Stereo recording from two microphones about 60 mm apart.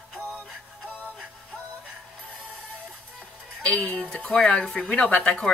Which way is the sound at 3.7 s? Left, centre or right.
Left.